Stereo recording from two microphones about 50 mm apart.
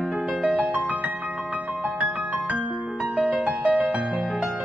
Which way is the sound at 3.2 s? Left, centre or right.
Centre.